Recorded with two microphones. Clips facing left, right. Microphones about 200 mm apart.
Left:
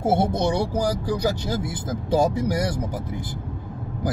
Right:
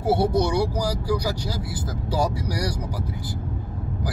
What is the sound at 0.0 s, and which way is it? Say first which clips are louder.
Speech: even; 25° left (ahead or behind).